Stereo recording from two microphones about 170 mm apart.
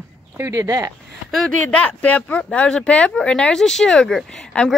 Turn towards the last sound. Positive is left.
turn(degrees=5)  # may be behind; listen again after turning